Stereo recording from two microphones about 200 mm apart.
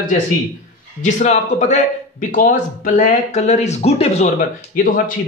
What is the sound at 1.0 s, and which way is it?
A man's voice, 35° left (ahead or behind).